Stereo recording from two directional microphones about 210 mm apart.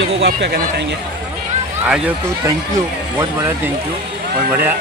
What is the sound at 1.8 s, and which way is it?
Speech, 5° right (ahead or behind).